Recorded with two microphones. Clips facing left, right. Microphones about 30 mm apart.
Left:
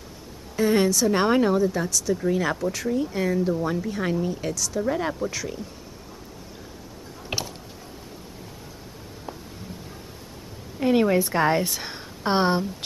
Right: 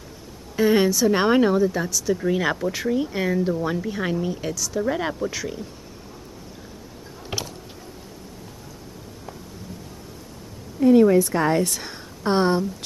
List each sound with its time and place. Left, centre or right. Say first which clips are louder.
0.6 s speech: right 2 dB; centre
2.1 s speech: right 2 dB; centre
10.8 s a woman's voice: right 5 dB; left